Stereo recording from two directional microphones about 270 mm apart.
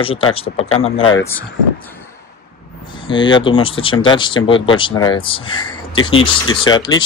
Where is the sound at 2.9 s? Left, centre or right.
Centre.